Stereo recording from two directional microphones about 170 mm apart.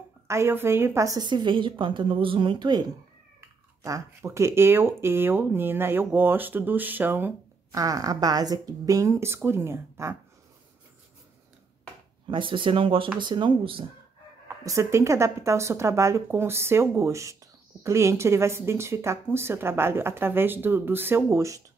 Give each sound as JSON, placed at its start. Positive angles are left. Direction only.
{"t": 0.3, "sound": "a woman's voice", "side_deg": -15}
{"t": 12.3, "sound": "a woman's voice", "side_deg": -30}
{"t": 14.6, "sound": "speech", "side_deg": -20}